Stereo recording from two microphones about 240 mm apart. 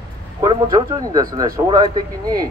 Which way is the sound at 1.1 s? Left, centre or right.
Centre.